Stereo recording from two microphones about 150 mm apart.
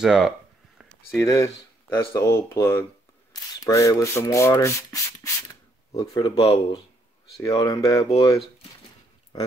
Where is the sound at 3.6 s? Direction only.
20° left (ahead or behind).